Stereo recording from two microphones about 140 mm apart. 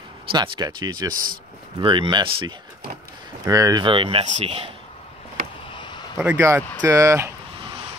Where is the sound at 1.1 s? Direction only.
80° right.